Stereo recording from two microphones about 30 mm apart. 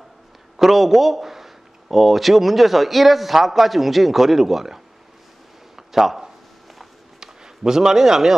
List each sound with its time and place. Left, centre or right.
0.6 s a man's voice: centre
5.8 s a sound: centre
7.2 s speech: right